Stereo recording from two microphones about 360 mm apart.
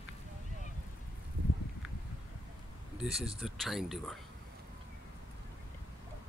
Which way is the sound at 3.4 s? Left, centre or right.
Centre.